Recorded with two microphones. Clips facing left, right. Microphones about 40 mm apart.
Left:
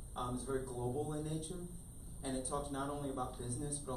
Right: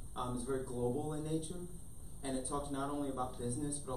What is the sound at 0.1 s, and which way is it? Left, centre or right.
Speech, centre.